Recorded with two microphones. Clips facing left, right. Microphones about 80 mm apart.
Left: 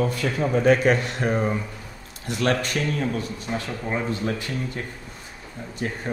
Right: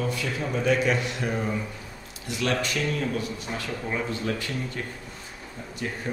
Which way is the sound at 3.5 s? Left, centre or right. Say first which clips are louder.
Left 3 dB; left.